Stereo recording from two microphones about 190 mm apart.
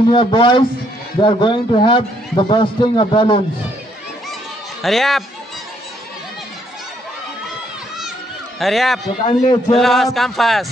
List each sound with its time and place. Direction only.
0.1 s a man's voice: 25° left (ahead or behind)
4.8 s speech: centre (ahead or behind)
8.5 s speech: centre (ahead or behind)
9.3 s a man's voice: 25° left (ahead or behind)
9.8 s speech: centre (ahead or behind)